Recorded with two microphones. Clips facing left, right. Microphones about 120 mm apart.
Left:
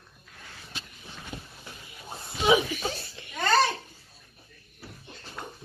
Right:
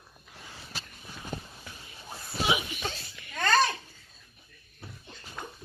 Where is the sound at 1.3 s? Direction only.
45° right (ahead or behind).